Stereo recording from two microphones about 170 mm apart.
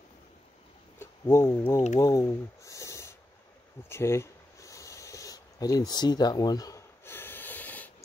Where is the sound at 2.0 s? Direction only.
20° left (ahead or behind).